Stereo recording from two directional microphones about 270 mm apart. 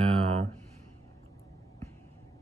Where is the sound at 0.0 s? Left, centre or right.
Right.